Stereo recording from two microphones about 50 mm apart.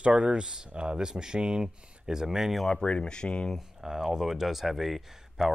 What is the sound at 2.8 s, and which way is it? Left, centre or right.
Speech, left.